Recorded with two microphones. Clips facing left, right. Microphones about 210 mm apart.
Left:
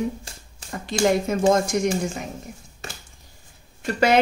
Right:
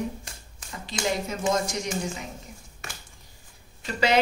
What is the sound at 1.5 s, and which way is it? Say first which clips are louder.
Speech: left 7 dB; 55° left (ahead or behind).